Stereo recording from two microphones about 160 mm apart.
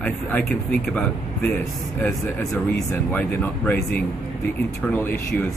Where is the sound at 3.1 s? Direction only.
10° left (ahead or behind).